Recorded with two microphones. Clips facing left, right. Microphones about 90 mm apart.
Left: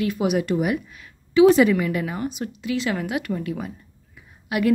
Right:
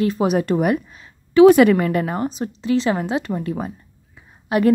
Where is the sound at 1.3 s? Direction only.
55° right (ahead or behind).